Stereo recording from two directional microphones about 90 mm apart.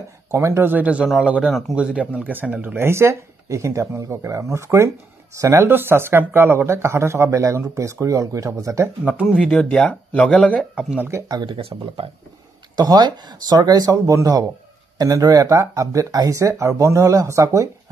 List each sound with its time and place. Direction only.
0.3 s speech: 30° right (ahead or behind)
5.7 s speech: 25° right (ahead or behind)
9.0 s speech: 10° right (ahead or behind)
9.4 s speech: 10° left (ahead or behind)
11.4 s speech: 70° right (ahead or behind)
12.7 s speech: 50° right (ahead or behind)